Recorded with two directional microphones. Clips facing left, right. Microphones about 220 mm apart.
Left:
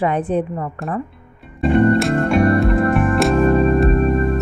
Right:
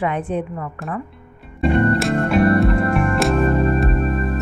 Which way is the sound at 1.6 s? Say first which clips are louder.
Left 3 dB; centre (ahead or behind).